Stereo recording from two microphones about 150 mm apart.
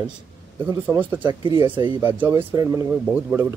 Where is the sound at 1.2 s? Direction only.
30° right (ahead or behind).